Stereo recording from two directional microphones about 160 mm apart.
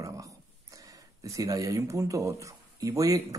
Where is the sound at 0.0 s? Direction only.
20° right (ahead or behind).